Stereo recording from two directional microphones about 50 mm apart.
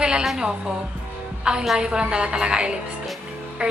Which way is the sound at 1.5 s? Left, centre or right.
Right.